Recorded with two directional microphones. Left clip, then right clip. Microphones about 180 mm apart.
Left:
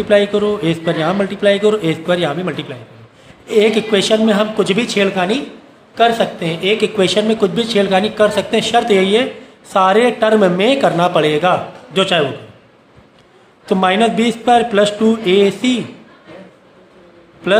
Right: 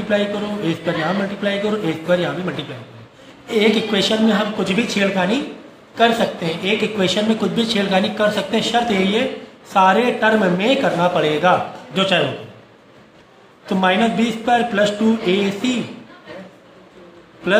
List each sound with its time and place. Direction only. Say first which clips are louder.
0.1 s a man's voice: left 7 dB; 55° left (ahead or behind)
3.4 s speech: left 4 dB; 35° left (ahead or behind)
13.7 s speech: left 4 dB; 55° left (ahead or behind)